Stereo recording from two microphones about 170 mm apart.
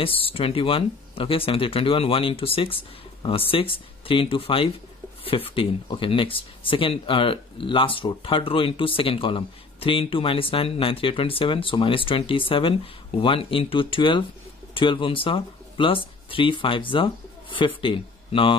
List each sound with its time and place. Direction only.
0.0 s speech: 35° left (ahead or behind)